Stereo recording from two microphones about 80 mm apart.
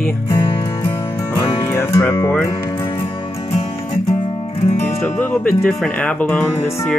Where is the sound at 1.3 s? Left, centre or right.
Left.